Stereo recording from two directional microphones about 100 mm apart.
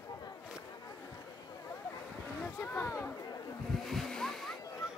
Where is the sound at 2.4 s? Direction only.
15° left (ahead or behind).